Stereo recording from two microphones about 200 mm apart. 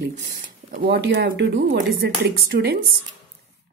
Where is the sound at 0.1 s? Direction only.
45° right (ahead or behind).